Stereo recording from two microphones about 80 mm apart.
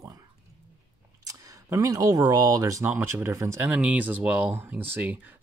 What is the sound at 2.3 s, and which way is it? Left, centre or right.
Speech, right.